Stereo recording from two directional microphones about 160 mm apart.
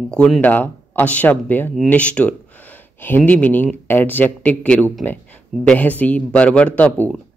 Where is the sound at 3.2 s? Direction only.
10° left (ahead or behind).